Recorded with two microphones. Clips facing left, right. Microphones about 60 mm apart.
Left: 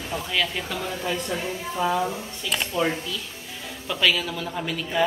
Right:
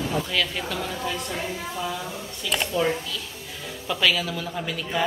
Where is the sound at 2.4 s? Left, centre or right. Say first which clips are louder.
Right 2 dB; centre.